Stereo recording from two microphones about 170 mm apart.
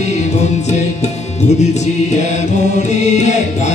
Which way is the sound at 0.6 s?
40° left (ahead or behind).